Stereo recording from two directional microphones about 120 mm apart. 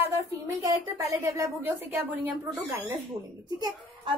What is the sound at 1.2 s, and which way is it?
A woman's voice, 25° right (ahead or behind).